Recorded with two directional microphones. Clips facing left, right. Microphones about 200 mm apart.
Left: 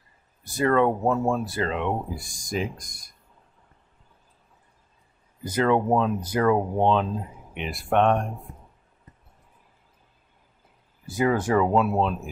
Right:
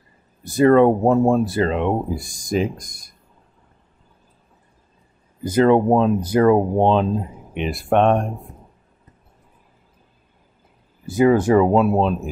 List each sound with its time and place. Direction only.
0.5 s speech: 25° right (ahead or behind)
5.4 s speech: 30° right (ahead or behind)
11.1 s speech: 20° right (ahead or behind)